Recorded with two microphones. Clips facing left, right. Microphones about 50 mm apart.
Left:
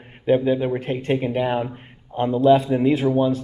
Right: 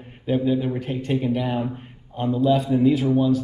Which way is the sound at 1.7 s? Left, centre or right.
Left.